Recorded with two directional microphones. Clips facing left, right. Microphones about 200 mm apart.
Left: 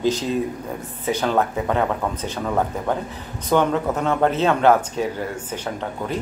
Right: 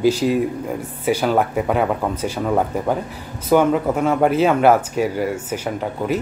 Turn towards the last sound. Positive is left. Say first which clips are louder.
# right 5 dB
turn(degrees=-10)  # may be behind; listen again after turning